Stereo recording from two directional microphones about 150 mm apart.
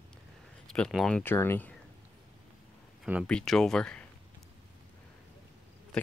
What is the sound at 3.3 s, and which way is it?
Speech, 5° left (ahead or behind).